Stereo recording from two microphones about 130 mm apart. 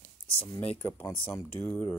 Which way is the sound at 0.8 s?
15° left (ahead or behind).